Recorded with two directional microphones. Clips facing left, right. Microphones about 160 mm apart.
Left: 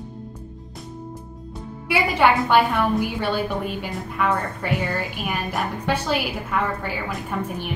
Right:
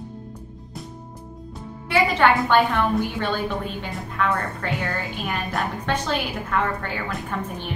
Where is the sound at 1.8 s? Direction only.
10° left (ahead or behind).